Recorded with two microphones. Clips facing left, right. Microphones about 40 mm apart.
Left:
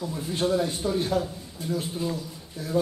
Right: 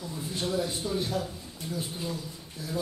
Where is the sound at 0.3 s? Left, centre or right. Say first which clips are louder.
Left 5 dB; left.